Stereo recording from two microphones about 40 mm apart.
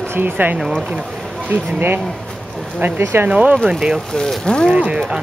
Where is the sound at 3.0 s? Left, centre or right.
Right.